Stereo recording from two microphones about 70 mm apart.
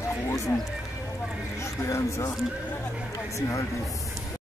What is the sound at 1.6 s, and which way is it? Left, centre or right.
Speech, left.